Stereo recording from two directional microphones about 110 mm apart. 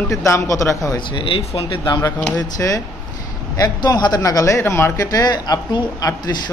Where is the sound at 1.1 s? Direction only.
50° left (ahead or behind).